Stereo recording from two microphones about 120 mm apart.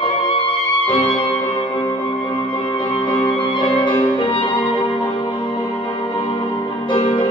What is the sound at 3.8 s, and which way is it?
Music, 40° left (ahead or behind).